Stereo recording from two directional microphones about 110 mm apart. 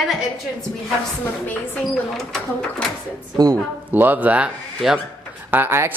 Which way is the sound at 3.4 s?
40° right (ahead or behind).